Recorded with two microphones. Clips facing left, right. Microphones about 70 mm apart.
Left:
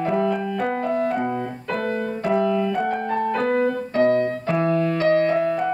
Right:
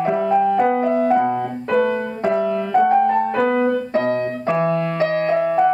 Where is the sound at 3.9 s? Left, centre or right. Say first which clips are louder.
Left 1 dB; right.